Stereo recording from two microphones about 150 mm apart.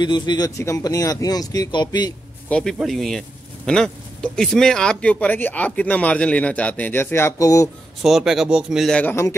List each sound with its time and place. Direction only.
0.0 s speech: 30° left (ahead or behind)
2.5 s speech: centre (ahead or behind); by 7.7 s 20° left (ahead or behind)
8.0 s speech: centre (ahead or behind)